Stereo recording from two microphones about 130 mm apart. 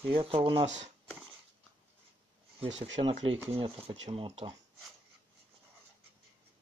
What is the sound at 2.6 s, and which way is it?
Speech, 45° right (ahead or behind).